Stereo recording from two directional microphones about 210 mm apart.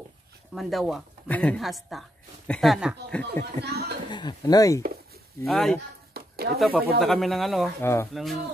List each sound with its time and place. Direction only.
0.6 s speech: centre (ahead or behind)
3.6 s speech: 50° right (ahead or behind)
4.1 s speech: 20° left (ahead or behind)
5.5 s speech: centre (ahead or behind)
6.1 s a sound: 50° right (ahead or behind)
7.0 s speech: centre (ahead or behind)
7.8 s speech: 10° left (ahead or behind)
8.1 s speech: centre (ahead or behind)